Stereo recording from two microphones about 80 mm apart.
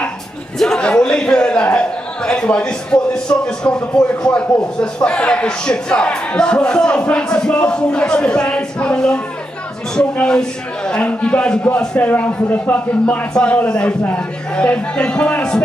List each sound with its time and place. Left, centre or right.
0.6 s a man's voice: centre